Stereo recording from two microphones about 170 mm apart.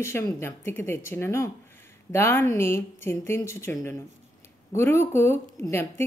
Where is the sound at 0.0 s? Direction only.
15° left (ahead or behind).